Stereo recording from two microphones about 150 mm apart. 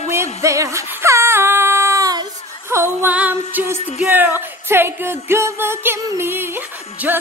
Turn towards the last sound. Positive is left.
turn(degrees=-10)  # may be behind; listen again after turning